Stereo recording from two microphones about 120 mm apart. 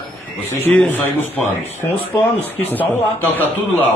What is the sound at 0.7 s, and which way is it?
Speech, 15° left (ahead or behind).